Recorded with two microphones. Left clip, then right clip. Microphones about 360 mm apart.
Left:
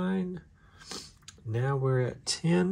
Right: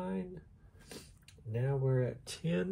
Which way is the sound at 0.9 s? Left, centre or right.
Left.